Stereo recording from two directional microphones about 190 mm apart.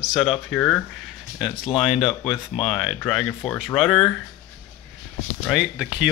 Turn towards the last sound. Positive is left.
turn(degrees=-5)  # may be behind; listen again after turning